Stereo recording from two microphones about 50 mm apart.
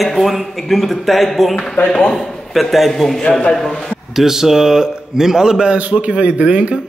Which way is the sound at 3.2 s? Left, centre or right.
Centre.